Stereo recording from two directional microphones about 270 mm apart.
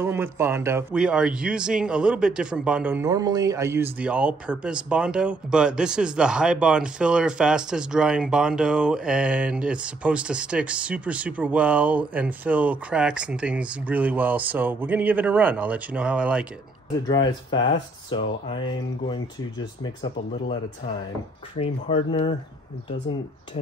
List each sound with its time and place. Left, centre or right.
0.0 s a man's voice: centre
17.1 s speech: centre
19.8 s speech: centre
21.5 s speech: left